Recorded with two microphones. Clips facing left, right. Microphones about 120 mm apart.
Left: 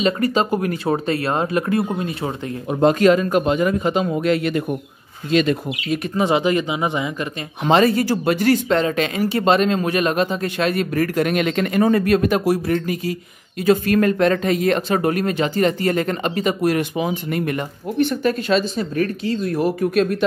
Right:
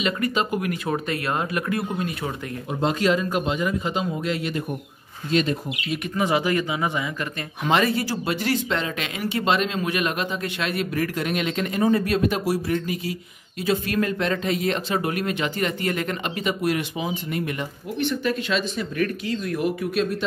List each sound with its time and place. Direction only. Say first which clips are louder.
0.0 s speech: left 5 dB; 35° left (ahead or behind)
2.7 s speech: left 7 dB; 50° left (ahead or behind)
5.3 s speech: left 5 dB; 75° left (ahead or behind)
6.1 s speech: left 4 dB; 25° left (ahead or behind)
7.9 s speech: left 6 dB; 50° left (ahead or behind)